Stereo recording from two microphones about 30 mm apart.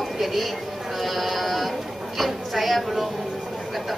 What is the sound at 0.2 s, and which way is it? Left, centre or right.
Speech, centre.